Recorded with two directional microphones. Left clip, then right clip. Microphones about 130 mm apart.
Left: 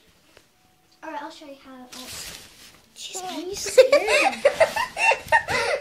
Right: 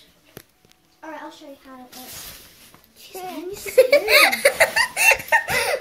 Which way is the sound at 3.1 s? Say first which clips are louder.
Even; 15° right (ahead or behind).